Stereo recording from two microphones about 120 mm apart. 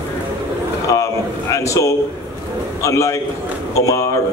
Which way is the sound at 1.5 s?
25° left (ahead or behind).